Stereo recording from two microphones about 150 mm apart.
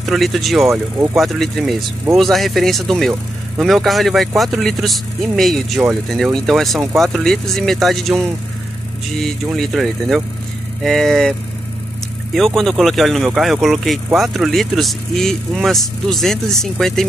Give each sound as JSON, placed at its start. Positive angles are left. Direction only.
{"t": 0.0, "sound": "speech", "side_deg": 0}
{"t": 0.7, "sound": "speech", "side_deg": -20}
{"t": 1.1, "sound": "speech", "side_deg": 0}
{"t": 12.4, "sound": "speech", "side_deg": 0}